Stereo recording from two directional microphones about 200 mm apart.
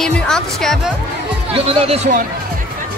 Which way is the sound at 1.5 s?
30° right (ahead or behind).